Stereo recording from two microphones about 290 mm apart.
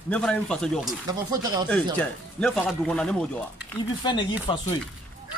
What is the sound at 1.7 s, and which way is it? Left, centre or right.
Speech, centre.